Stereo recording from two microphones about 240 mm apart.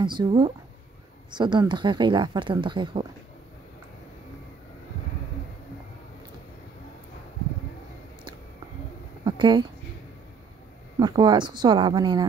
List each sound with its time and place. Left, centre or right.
0.0 s speech: centre
9.2 s a sound: centre
11.0 s speech: centre